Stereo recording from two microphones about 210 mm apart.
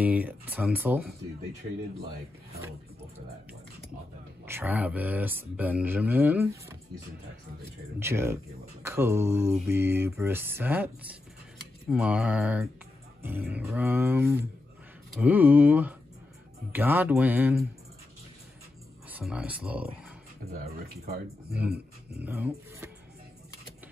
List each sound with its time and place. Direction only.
0.0 s speech: 10° right (ahead or behind)
4.5 s speech: 10° right (ahead or behind)
8.0 s speech: 10° right (ahead or behind)
19.0 s speech: 5° right (ahead or behind)
20.5 s speech: 45° right (ahead or behind)
22.2 s speech: 10° right (ahead or behind)